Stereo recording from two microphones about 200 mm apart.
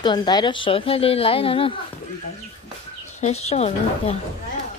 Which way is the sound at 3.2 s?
30° left (ahead or behind).